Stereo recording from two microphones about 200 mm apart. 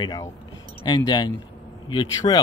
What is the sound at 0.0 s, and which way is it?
Speech, 20° left (ahead or behind).